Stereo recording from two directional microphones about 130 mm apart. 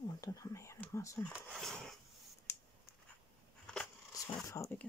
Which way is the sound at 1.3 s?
Centre (ahead or behind).